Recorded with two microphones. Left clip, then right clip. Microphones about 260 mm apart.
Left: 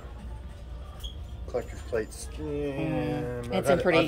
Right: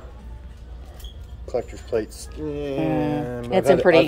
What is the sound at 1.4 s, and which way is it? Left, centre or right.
A man's voice, right.